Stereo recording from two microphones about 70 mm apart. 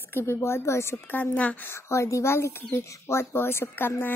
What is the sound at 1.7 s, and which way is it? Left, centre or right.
A woman's voice, left.